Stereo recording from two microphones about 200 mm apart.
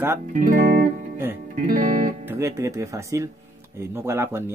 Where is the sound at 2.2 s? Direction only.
10° right (ahead or behind).